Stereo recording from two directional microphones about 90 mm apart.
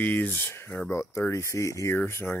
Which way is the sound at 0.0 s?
20° left (ahead or behind).